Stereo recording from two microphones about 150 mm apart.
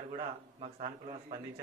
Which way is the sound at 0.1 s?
40° right (ahead or behind).